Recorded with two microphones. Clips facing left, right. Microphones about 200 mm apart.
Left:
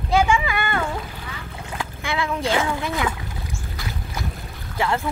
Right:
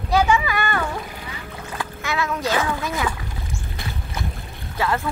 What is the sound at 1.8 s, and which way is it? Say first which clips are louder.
Splash: even; 15° left (ahead or behind).